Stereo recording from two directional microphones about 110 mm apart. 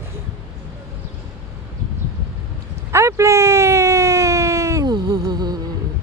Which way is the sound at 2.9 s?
25° right (ahead or behind).